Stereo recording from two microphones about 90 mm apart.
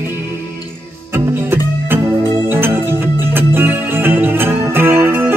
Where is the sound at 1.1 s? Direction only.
25° right (ahead or behind).